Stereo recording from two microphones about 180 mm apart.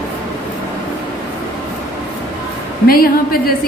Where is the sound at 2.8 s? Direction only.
55° left (ahead or behind).